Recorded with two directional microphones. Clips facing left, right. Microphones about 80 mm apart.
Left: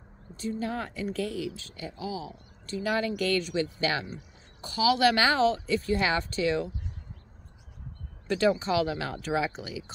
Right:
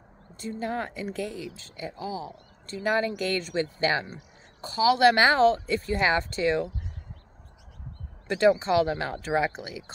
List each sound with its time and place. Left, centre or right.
0.4 s speech: right
8.3 s speech: right